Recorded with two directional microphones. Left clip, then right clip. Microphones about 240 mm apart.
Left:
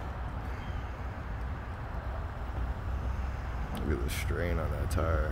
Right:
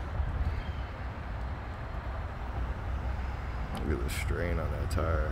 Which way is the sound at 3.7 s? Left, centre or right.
Centre.